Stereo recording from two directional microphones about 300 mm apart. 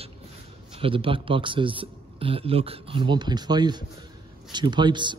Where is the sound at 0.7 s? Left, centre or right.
Centre.